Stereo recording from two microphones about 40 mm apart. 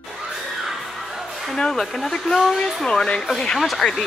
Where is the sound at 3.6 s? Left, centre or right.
Centre.